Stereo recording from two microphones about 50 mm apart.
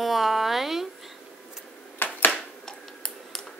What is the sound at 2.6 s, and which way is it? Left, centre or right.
Tick-tock, centre.